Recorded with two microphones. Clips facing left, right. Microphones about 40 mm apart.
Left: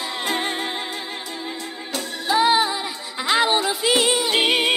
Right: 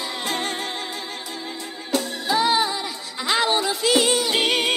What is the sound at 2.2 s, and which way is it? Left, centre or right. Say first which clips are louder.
Music: left 4 dB; centre.